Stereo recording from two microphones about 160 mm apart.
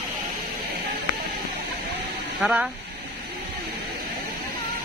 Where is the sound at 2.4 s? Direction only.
5° right (ahead or behind).